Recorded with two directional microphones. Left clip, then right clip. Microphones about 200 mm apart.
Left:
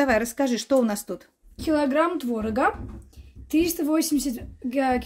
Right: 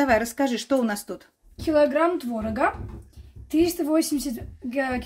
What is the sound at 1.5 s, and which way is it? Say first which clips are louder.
A woman's voice: right 3 dB; 50° left (ahead or behind).